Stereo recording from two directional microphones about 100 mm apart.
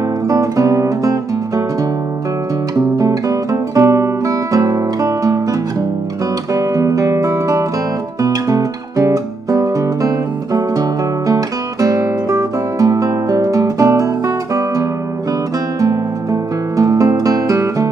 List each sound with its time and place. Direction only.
0.3 s music: 35° right (ahead or behind)
3.0 s music: 35° right (ahead or behind)